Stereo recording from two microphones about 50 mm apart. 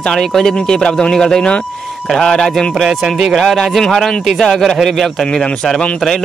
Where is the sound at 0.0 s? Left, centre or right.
Centre.